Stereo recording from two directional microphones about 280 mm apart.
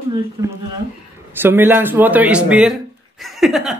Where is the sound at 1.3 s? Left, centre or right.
Centre.